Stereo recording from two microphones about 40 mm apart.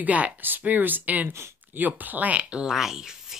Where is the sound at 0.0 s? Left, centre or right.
Right.